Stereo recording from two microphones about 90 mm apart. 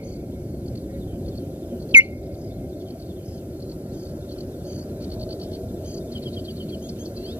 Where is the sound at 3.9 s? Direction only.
15° right (ahead or behind).